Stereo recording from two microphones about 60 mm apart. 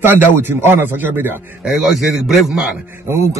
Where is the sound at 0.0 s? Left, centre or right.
Right.